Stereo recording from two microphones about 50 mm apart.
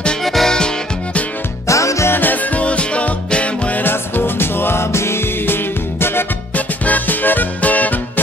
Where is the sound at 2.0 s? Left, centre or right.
Left.